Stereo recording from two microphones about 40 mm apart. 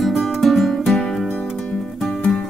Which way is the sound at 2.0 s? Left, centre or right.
Left.